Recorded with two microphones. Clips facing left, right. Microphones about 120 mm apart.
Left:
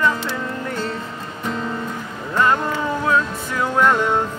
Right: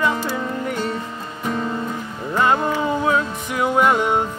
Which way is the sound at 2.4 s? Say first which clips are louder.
Right 1 dB; 20° right (ahead or behind).